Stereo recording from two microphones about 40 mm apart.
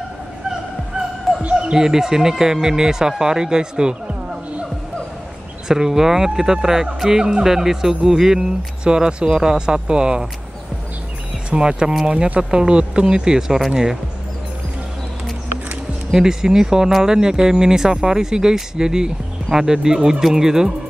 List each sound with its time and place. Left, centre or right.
1.4 s speech: right
1.7 s speech: centre
5.7 s speech: centre
11.5 s speech: right
16.1 s speech: centre